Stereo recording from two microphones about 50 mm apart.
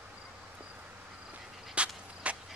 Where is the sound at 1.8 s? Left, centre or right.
Right.